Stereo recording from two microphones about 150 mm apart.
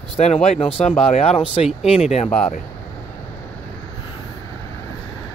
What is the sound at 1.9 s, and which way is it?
Speech, 45° left (ahead or behind).